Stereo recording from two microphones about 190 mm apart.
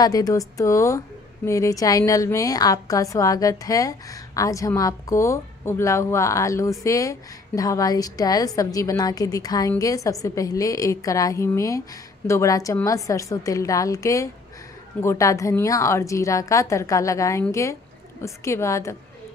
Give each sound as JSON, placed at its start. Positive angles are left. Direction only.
{"t": 0.0, "sound": "a woman's voice", "side_deg": 20}